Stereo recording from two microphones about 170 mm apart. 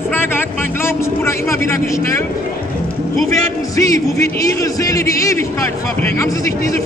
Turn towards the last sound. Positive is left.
turn(degrees=20)  # may be behind; listen again after turning